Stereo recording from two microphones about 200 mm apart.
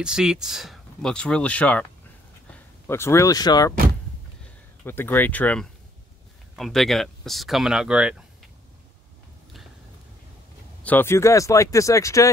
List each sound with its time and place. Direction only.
0.0 s speech: 5° right (ahead or behind)
2.9 s speech: 15° left (ahead or behind)
4.8 s speech: 10° left (ahead or behind)
10.8 s speech: 10° left (ahead or behind)